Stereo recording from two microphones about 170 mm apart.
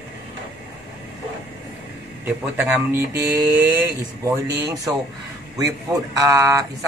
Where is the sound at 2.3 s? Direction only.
10° right (ahead or behind).